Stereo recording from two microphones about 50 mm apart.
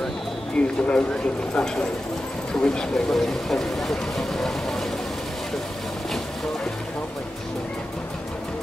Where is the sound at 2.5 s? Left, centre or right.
Centre.